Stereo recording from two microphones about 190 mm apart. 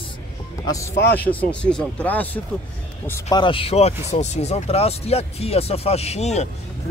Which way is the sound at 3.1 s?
20° left (ahead or behind).